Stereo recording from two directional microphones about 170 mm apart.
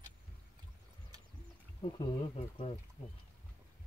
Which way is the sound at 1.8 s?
30° left (ahead or behind).